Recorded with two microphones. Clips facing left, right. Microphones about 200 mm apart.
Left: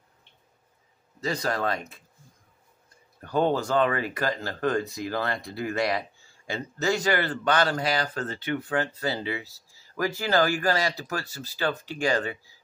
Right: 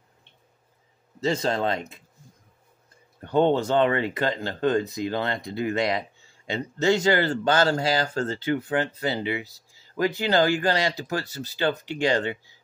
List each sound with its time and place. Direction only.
1.2 s speech: 25° right (ahead or behind)
3.2 s speech: 25° right (ahead or behind)